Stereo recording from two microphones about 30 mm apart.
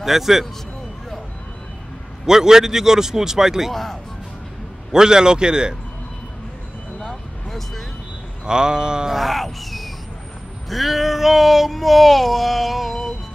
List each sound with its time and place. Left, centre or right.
0.0 s speech: centre
2.2 s speech: centre
3.7 s a sound: centre
4.9 s a man's voice: right
7.0 s vehicle: centre
8.5 s a man's voice: right
9.1 s speech: centre
10.7 s a sound: centre